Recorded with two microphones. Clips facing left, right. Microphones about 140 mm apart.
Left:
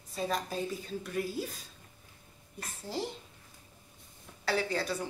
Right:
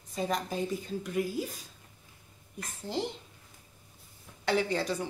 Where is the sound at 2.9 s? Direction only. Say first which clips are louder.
Right 3 dB; 20° right (ahead or behind).